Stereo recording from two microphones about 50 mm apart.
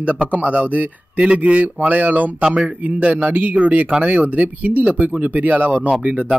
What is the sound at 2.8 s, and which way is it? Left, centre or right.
Speech, right.